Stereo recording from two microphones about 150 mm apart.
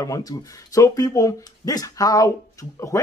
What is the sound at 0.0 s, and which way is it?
A man's voice, 25° left (ahead or behind).